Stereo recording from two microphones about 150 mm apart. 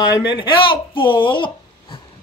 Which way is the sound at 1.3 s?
30° left (ahead or behind).